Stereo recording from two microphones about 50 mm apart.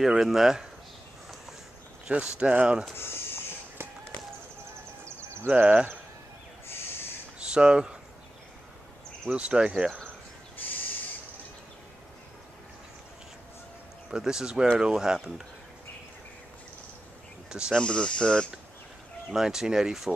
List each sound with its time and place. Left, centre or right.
0.0 s speech: centre
2.0 s speech: centre
5.0 s music: right
5.5 s speech: centre
7.3 s a sound: centre
9.3 s speech: centre
14.1 s speech: centre
17.5 s speech: centre
17.7 s speech: centre
19.3 s speech: centre